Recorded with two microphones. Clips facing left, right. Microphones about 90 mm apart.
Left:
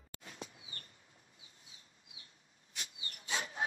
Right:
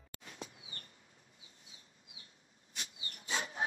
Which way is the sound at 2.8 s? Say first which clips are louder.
Right 1 dB; 30° right (ahead or behind).